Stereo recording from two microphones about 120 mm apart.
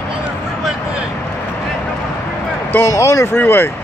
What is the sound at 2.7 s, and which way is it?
Speech, 20° left (ahead or behind).